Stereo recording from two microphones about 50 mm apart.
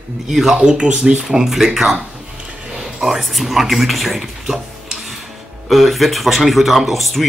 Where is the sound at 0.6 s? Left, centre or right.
Centre.